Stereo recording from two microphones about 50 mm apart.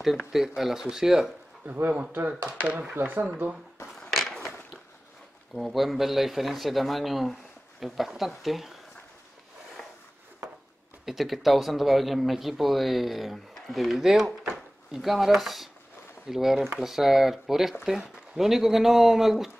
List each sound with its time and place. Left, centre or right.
0.3 s speech: centre
1.7 s a man's voice: right
4.1 s a sound: centre
5.5 s speech: centre
9.8 s filing: centre
11.1 s speech: centre